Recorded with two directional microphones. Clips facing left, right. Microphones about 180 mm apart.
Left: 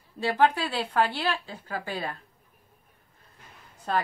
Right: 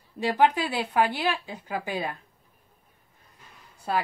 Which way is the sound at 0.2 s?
15° right (ahead or behind).